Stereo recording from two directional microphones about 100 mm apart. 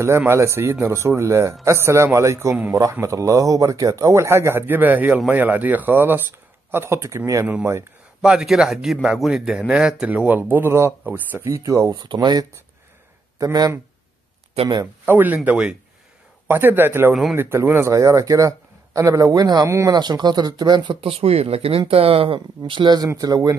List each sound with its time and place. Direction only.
0.2 s speech: 25° right (ahead or behind)
8.2 s speech: 5° right (ahead or behind); by 11.9 s 30° right (ahead or behind)
11.9 s speech: 50° right (ahead or behind)
15.0 s speech: 15° right (ahead or behind)
17.1 s speech: centre (ahead or behind)
17.4 s speech: 25° right (ahead or behind)
19.9 s speech: 45° right (ahead or behind); by 22.4 s 65° right (ahead or behind)
22.7 s speech: 50° right (ahead or behind)
23.0 s speech: 35° right (ahead or behind)